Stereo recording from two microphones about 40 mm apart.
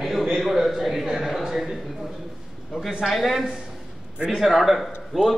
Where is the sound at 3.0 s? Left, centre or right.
Centre.